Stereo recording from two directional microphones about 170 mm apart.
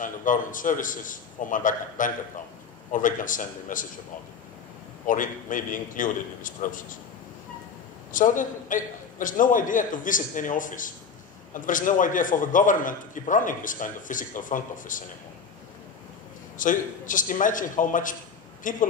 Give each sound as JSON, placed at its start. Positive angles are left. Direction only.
{"t": 0.0, "sound": "a man's voice", "side_deg": 50}
{"t": 5.0, "sound": "a man's voice", "side_deg": 50}
{"t": 8.1, "sound": "a man's voice", "side_deg": 50}
{"t": 16.5, "sound": "a man's voice", "side_deg": 50}